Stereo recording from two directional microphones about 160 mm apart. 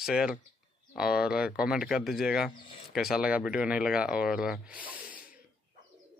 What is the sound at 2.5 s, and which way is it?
Speech, 30° left (ahead or behind).